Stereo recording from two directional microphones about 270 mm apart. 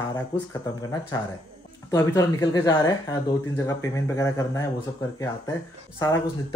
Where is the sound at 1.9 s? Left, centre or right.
Centre.